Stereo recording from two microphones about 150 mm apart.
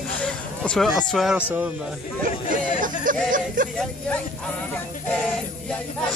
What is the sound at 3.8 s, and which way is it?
Speech, 10° left (ahead or behind).